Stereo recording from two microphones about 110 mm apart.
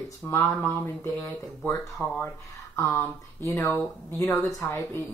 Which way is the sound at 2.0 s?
10° right (ahead or behind).